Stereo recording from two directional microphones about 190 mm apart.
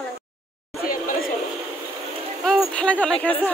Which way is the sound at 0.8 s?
50° left (ahead or behind).